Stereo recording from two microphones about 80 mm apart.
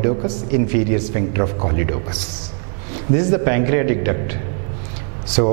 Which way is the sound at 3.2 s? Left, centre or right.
Centre.